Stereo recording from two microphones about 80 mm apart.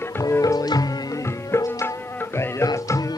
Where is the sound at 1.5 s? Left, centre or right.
Left.